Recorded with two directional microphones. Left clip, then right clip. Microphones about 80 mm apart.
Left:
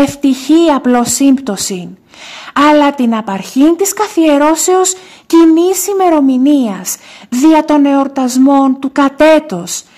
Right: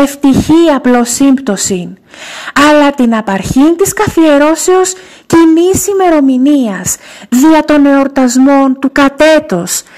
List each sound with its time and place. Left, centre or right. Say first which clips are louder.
0.0 s a woman's voice: right 3 dB; right
3.6 s a woman's voice: right 1 dB; right
5.3 s speech: right 1 dB; right
9.5 s speech: right 6 dB; right